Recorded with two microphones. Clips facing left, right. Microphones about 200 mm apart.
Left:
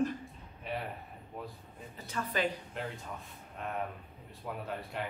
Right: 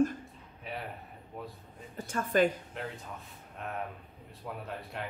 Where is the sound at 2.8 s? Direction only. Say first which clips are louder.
Even; centre (ahead or behind).